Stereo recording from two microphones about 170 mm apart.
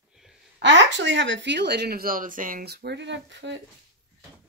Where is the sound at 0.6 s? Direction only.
90° right.